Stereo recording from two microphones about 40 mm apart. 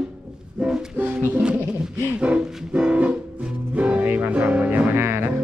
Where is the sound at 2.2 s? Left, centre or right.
Right.